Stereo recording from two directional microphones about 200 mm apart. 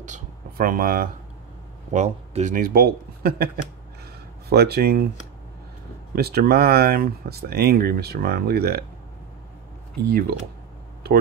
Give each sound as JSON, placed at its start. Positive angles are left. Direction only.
{"t": 0.0, "sound": "a sound", "side_deg": -40}
{"t": 1.9, "sound": "speech", "side_deg": -35}
{"t": 4.5, "sound": "speech", "side_deg": -50}
{"t": 6.1, "sound": "speech", "side_deg": -50}
{"t": 10.0, "sound": "speech", "side_deg": -50}
{"t": 11.0, "sound": "a sound", "side_deg": -50}